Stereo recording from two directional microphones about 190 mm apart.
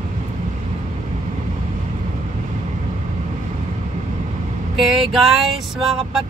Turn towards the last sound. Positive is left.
turn(degrees=0)  # may be behind; listen again after turning